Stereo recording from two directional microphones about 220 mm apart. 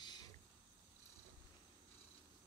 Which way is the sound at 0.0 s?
20° left (ahead or behind).